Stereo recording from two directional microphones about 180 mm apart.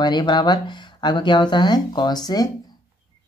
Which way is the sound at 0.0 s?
25° left (ahead or behind).